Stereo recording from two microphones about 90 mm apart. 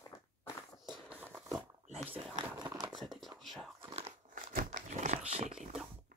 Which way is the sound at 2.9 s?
Centre (ahead or behind).